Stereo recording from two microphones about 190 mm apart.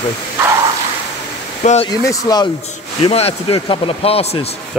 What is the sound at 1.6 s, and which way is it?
Speech, 40° left (ahead or behind).